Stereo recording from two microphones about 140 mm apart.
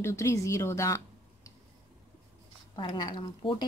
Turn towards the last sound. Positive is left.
turn(degrees=35)  # may be behind; listen again after turning